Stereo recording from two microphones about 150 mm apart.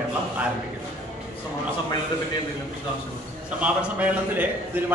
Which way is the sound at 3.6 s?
10° right (ahead or behind).